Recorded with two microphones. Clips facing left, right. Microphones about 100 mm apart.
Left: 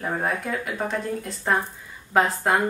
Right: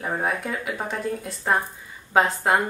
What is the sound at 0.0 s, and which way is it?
Speech, 5° right (ahead or behind).